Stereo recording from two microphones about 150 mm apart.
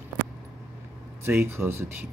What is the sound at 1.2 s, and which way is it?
Speech, 15° right (ahead or behind).